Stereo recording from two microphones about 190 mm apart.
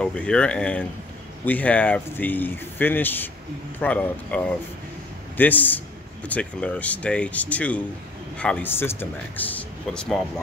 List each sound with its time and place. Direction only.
0.0 s speech: 5° left (ahead or behind)